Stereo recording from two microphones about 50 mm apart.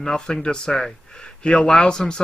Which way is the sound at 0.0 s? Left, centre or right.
Centre.